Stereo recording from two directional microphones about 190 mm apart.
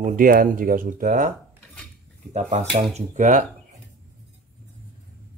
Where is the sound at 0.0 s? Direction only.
45° right (ahead or behind).